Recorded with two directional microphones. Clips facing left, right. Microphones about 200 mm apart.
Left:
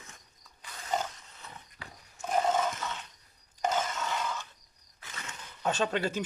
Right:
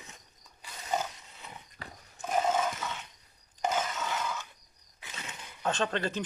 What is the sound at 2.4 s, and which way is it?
Roar, 5° right (ahead or behind).